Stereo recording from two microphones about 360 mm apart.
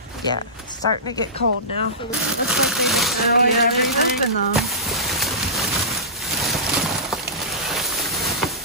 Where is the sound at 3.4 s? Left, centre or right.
Left.